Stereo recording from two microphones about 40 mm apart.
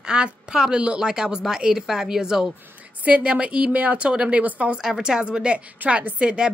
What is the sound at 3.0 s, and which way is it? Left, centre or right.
A woman's voice, right.